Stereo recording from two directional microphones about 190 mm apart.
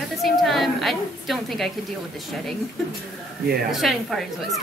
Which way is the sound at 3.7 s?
Centre (ahead or behind).